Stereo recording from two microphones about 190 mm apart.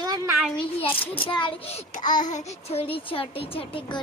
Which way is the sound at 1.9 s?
40° left (ahead or behind).